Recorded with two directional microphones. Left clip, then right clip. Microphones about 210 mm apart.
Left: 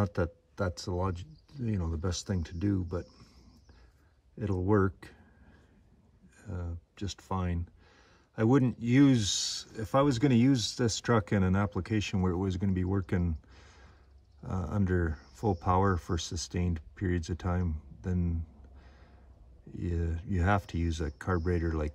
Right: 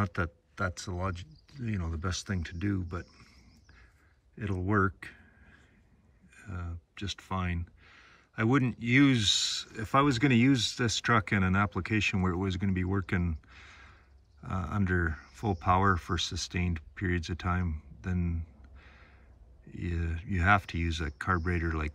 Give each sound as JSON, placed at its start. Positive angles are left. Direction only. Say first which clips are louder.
{"t": 0.0, "sound": "speech", "louder": "left 1 dB", "side_deg": 20}
{"t": 4.4, "sound": "speech", "louder": "left 1 dB", "side_deg": 15}
{"t": 6.3, "sound": "speech", "louder": "even", "side_deg": 15}